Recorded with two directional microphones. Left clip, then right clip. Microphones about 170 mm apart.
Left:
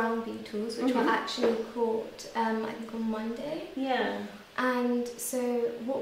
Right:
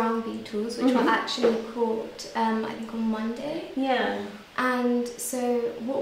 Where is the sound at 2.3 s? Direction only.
Centre (ahead or behind).